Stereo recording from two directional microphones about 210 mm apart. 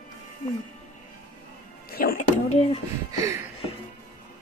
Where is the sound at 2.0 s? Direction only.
45° left (ahead or behind).